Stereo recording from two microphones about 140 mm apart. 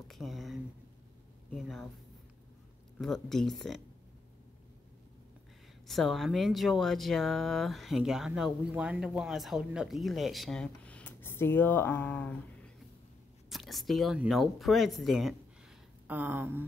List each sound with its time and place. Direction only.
0.1 s speech: centre (ahead or behind)
3.0 s speech: centre (ahead or behind)
5.9 s speech: centre (ahead or behind)
16.1 s a sound: 15° right (ahead or behind)